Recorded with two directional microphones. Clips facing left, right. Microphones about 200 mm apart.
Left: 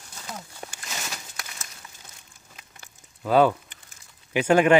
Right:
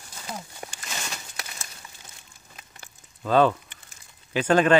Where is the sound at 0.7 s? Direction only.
Centre (ahead or behind).